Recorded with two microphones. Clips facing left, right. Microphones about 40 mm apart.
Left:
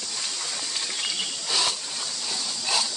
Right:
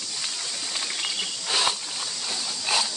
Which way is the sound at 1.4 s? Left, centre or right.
Right.